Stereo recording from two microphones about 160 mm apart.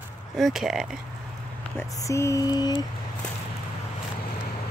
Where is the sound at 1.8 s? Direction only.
20° left (ahead or behind).